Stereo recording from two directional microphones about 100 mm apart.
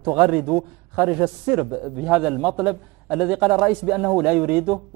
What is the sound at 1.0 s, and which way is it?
A man's voice, 20° right (ahead or behind).